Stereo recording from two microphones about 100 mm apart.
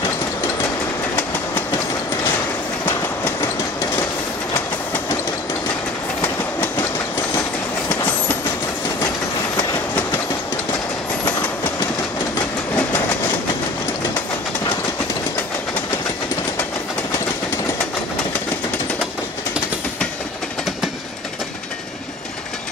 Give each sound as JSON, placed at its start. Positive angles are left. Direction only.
{"t": 2.8, "sound": "train", "side_deg": 20}
{"t": 6.2, "sound": "train", "side_deg": 20}
{"t": 12.4, "sound": "train", "side_deg": 20}